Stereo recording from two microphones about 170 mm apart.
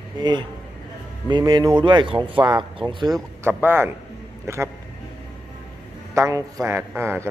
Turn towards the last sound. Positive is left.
turn(degrees=-15)  # may be behind; listen again after turning